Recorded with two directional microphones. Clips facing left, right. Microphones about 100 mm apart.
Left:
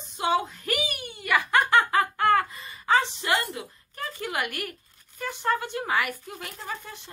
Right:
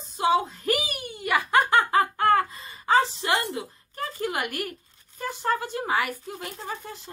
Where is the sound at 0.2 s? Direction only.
30° right (ahead or behind).